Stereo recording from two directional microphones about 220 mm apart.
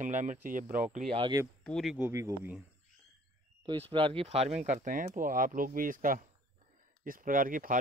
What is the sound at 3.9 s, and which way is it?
Speech, 25° right (ahead or behind).